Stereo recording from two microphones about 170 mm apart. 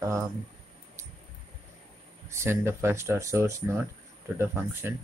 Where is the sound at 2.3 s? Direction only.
15° right (ahead or behind).